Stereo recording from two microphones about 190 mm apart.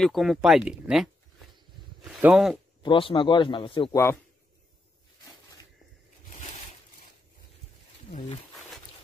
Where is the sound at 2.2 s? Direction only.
5° right (ahead or behind).